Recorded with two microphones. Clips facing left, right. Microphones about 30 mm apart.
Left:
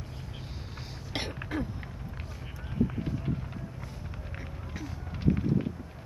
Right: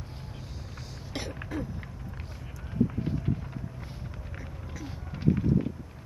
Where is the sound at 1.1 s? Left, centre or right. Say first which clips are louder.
Left 2 dB; left.